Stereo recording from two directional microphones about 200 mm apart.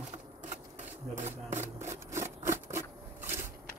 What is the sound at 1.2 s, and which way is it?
Speech, 35° right (ahead or behind).